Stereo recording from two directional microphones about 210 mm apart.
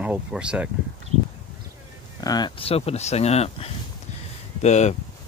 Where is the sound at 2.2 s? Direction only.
20° left (ahead or behind).